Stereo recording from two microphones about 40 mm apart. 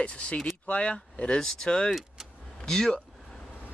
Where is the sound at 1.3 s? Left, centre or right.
Centre.